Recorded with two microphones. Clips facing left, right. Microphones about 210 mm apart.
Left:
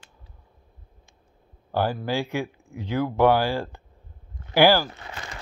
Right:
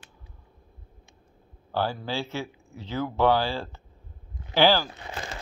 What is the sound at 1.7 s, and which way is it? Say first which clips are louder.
Speech: left 4 dB; 15° left (ahead or behind).